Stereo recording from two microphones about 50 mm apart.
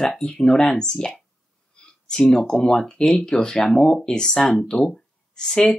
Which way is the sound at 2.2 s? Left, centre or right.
Centre.